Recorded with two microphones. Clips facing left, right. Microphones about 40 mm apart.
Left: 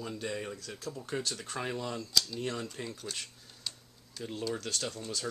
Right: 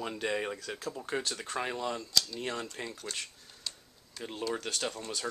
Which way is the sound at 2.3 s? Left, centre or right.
Centre.